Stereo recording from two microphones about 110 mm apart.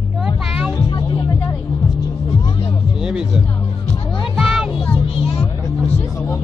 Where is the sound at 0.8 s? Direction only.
40° left (ahead or behind).